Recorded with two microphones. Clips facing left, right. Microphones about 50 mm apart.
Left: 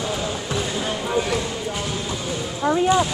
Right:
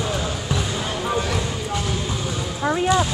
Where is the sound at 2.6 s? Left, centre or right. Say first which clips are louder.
Left 2 dB; centre.